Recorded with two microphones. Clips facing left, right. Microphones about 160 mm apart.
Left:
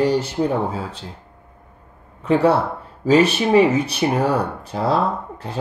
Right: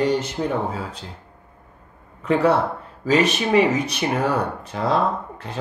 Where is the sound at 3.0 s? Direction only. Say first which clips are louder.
Left 4 dB; 35° left (ahead or behind).